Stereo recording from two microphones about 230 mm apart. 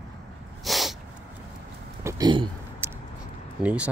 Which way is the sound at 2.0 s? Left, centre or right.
Centre.